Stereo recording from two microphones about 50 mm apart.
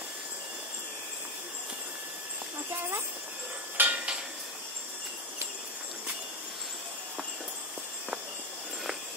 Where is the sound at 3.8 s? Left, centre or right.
Right.